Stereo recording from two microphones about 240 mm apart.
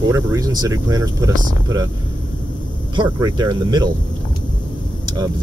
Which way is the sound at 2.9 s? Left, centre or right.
Centre.